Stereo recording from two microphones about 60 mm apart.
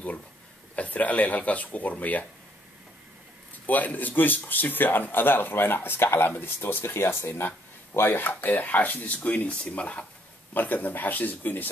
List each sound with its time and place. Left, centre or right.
0.7 s speech: left
3.6 s a man's voice: left